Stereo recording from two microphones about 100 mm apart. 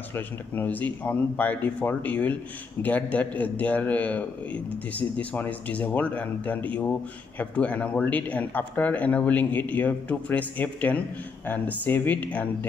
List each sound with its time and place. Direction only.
0.1 s speech: 20° left (ahead or behind)